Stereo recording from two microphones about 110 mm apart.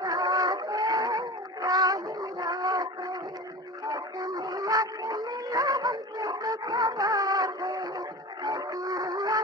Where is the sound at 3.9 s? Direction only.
35° right (ahead or behind).